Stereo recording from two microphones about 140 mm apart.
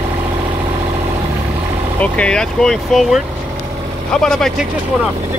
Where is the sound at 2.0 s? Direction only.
5° left (ahead or behind).